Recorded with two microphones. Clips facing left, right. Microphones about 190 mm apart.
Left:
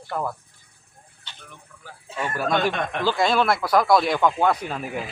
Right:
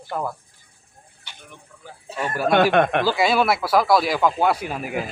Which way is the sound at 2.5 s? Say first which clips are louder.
Right 9 dB; 65° right (ahead or behind).